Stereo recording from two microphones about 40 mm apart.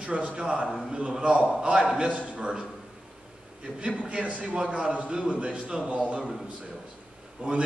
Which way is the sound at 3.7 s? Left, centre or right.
Right.